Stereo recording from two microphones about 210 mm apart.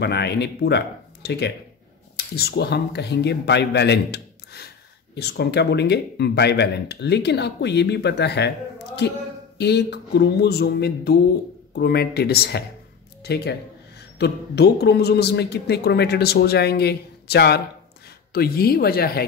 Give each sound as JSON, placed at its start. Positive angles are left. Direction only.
{"t": 0.0, "sound": "speech", "side_deg": 50}